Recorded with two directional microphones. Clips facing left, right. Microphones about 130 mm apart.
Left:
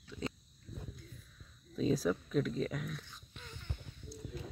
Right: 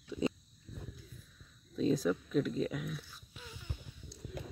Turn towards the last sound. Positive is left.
turn(degrees=-5)  # may be behind; listen again after turning